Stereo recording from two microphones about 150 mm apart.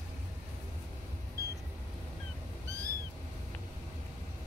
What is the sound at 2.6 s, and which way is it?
Cat, 20° right (ahead or behind).